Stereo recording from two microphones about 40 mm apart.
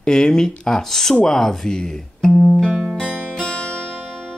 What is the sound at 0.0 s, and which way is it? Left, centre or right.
Speech, centre.